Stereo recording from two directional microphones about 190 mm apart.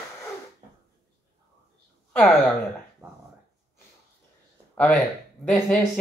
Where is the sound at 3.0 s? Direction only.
15° right (ahead or behind).